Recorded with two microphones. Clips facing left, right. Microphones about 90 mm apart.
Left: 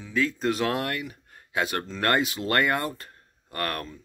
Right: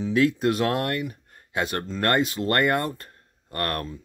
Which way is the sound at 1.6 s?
Centre (ahead or behind).